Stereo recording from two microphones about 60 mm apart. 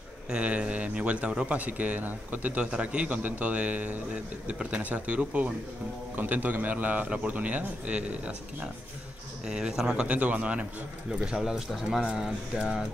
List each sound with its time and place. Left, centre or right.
0.3 s a man's voice: centre
10.0 s a man's voice: right; by 12.8 s centre